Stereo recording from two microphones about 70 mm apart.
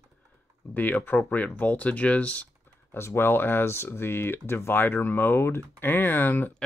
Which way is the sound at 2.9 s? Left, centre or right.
Left.